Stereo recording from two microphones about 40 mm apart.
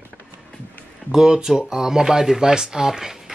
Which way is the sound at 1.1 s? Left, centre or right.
Centre.